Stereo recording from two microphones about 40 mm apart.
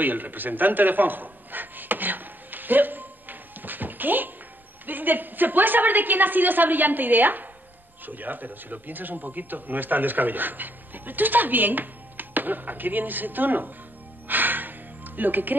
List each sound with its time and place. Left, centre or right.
0.0 s a sound: right
4.8 s speech: right
14.2 s music: right